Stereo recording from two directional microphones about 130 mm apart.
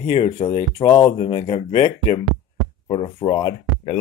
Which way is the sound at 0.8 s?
25° left (ahead or behind).